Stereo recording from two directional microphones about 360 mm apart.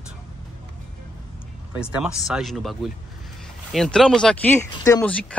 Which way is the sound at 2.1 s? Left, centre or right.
Centre.